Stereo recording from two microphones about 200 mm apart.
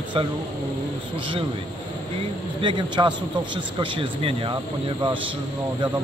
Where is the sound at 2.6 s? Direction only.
25° right (ahead or behind).